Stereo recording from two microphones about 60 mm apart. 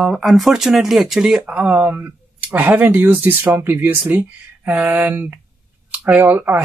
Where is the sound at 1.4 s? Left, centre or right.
Centre.